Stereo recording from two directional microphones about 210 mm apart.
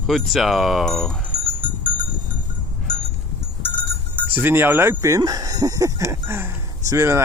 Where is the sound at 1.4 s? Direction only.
35° left (ahead or behind).